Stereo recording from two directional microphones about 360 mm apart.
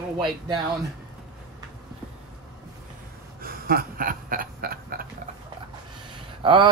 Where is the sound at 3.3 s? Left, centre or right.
Right.